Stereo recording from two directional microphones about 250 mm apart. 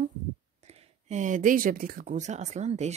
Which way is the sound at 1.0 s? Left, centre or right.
Right.